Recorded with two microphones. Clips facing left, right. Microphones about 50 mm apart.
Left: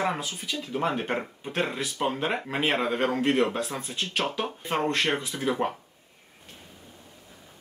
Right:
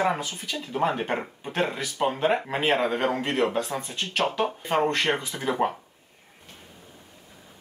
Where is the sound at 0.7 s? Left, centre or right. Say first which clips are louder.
Right 2 dB; centre.